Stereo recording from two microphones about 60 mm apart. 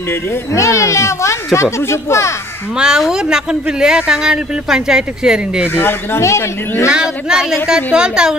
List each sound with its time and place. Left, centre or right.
0.5 s speech: left
2.8 s speech: centre
5.8 s speech: left
6.9 s speech: centre